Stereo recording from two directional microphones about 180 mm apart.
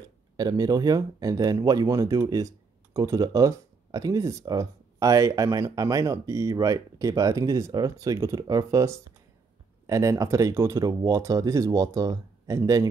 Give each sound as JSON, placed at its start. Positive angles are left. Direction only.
{"t": 0.4, "sound": "speech", "side_deg": -20}